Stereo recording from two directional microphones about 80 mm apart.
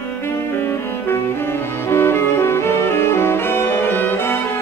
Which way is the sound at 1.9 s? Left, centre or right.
Left.